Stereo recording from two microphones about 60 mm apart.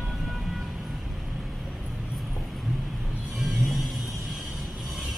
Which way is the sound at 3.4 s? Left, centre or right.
Centre.